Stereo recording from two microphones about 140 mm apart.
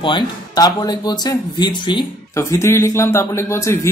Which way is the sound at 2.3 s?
20° left (ahead or behind).